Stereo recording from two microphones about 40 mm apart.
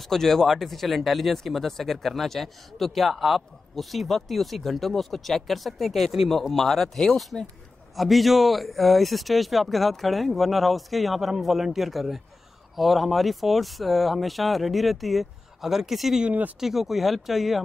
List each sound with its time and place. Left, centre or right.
0.0 s speech: centre
16.3 s speech: right
16.5 s speech: centre